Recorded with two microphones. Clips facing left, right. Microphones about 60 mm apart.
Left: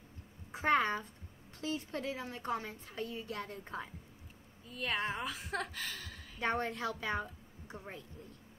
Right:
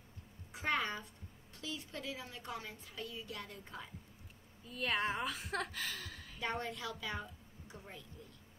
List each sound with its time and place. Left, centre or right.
0.5 s a woman's voice: left
4.6 s a woman's voice: centre
6.4 s a woman's voice: left